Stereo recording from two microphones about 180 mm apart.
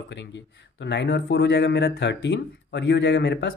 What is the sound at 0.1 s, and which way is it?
Speech, 80° left.